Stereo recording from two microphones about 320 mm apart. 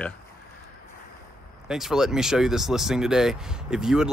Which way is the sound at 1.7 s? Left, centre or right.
Centre.